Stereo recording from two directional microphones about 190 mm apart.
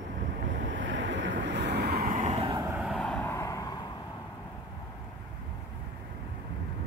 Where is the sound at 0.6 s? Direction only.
70° right (ahead or behind); by 2.2 s 50° right (ahead or behind).